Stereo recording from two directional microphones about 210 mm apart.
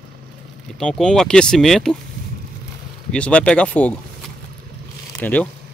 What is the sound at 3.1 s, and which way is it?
Speech, 5° left (ahead or behind).